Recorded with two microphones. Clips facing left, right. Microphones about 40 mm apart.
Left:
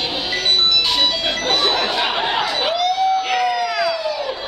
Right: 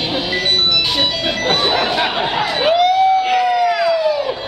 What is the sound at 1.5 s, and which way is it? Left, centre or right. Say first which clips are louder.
Speech: right 2 dB; centre.